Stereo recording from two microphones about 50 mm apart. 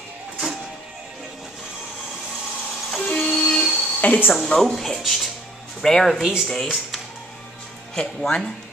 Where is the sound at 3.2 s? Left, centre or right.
Centre.